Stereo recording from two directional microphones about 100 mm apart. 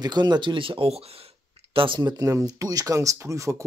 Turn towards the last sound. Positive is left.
turn(degrees=-30)  # may be behind; listen again after turning